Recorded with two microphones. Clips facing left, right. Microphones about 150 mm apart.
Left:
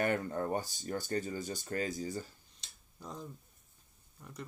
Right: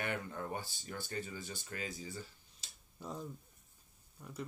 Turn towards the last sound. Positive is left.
turn(degrees=-10)  # may be behind; listen again after turning